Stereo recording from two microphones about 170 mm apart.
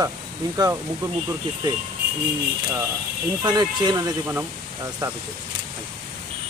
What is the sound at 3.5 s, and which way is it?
Speech, 25° right (ahead or behind).